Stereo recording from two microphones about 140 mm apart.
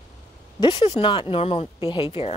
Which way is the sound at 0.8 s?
40° left (ahead or behind).